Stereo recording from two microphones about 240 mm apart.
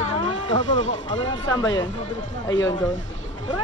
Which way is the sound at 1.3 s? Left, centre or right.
Left.